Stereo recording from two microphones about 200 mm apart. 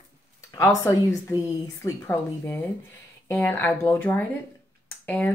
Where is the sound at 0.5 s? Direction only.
15° left (ahead or behind).